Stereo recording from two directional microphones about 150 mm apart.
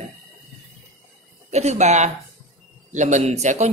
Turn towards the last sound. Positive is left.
turn(degrees=-50)  # may be behind; listen again after turning